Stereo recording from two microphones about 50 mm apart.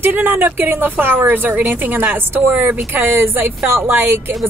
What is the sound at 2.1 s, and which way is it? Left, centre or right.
Speech, right.